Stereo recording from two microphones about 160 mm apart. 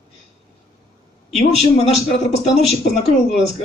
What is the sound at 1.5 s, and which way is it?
Speech, 40° left (ahead or behind).